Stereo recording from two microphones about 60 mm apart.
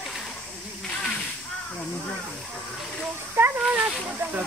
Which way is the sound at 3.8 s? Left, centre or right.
Right.